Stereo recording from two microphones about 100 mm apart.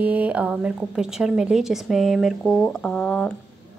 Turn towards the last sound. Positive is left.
turn(degrees=5)  # may be behind; listen again after turning